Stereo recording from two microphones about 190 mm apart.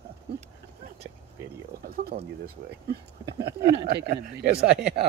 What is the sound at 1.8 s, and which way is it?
Speech, 55° right (ahead or behind).